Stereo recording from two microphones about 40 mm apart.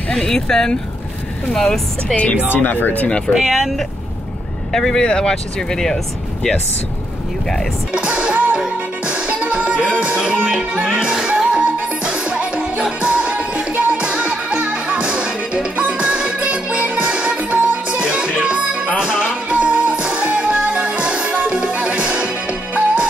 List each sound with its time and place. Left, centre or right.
0.1 s speech: centre
2.5 s speech: left
3.4 s speech: centre
4.7 s speech: centre
5.0 s speech: centre
7.9 s speech: right
9.0 s music: right